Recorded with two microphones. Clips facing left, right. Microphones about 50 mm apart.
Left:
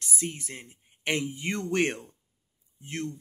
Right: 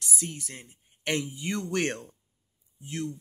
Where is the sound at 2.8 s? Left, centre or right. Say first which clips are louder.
Even; left.